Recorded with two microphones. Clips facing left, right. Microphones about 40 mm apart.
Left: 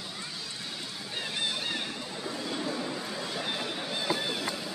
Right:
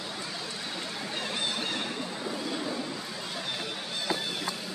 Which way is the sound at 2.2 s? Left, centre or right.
Centre.